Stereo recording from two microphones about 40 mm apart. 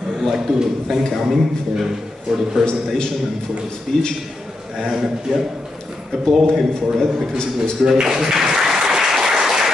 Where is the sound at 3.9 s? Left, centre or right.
Centre.